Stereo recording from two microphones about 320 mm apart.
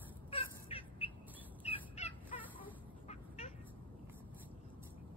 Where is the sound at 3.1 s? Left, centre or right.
Left.